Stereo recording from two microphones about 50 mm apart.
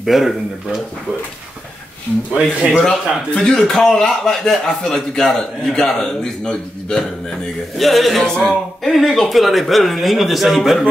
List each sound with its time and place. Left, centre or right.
0.0 s speech: centre
2.3 s speech: right
3.4 s a man's voice: centre
7.7 s speech: centre
8.2 s speech: centre